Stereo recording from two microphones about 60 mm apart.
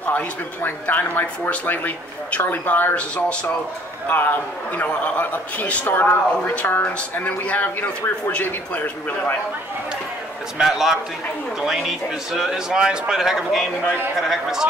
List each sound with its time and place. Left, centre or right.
0.1 s a man's voice: left
10.6 s speech: centre